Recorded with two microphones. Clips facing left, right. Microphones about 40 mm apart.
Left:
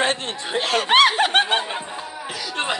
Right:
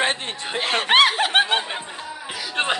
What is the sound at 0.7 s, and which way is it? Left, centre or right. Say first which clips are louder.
Speech: even; right.